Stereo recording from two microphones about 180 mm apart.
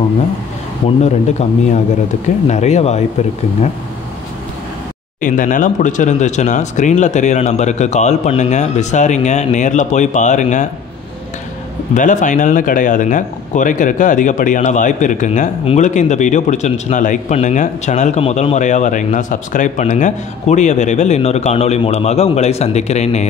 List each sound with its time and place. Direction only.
0.8 s speech: 40° left (ahead or behind)
5.2 s speech: 45° left (ahead or behind)
11.9 s speech: 45° left (ahead or behind)